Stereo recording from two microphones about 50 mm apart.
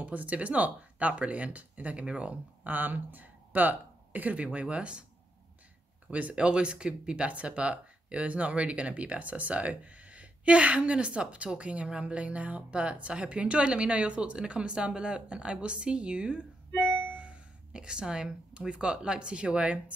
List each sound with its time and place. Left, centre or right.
0.0 s speech: right
6.0 s speech: right